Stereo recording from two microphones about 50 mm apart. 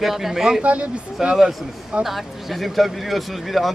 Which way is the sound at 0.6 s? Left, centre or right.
Right.